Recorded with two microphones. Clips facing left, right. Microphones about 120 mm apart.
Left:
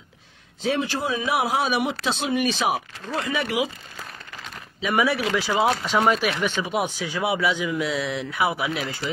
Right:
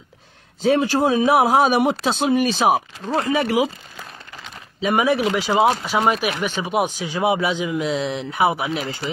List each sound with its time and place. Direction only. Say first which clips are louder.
0.6 s speech: right 7 dB; 40° right (ahead or behind)
4.8 s speech: right 4 dB; 25° right (ahead or behind)